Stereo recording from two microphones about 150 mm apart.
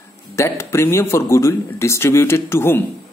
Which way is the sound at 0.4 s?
20° left (ahead or behind).